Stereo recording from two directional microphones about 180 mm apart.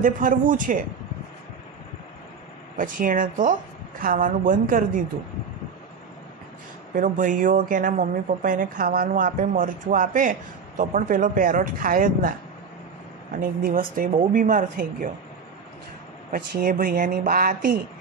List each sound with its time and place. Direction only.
0.0 s a woman's voice: 50° right (ahead or behind)
2.8 s a woman's voice: 50° right (ahead or behind)
7.0 s a woman's voice: 50° right (ahead or behind)
16.3 s a woman's voice: 50° right (ahead or behind)